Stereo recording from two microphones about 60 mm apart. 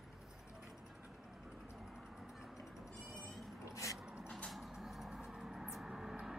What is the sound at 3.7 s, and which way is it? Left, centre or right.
Dog, left.